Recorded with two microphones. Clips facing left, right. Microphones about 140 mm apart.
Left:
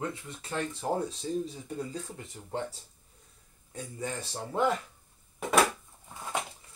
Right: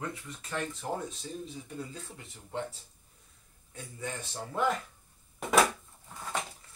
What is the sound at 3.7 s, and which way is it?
Speech, 35° left (ahead or behind).